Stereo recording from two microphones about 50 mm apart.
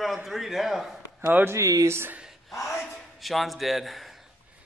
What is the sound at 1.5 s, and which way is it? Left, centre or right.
Speech, right.